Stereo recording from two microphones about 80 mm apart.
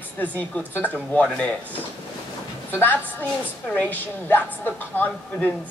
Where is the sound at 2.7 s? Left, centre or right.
Left.